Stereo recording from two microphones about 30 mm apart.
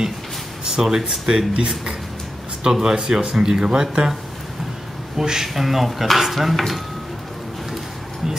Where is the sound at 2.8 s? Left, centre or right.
Centre.